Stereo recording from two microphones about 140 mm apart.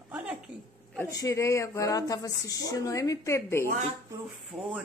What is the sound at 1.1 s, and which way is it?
Speech, 20° left (ahead or behind).